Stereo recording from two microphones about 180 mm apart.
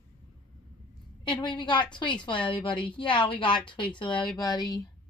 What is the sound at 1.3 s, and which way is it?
A woman's voice, 25° left (ahead or behind).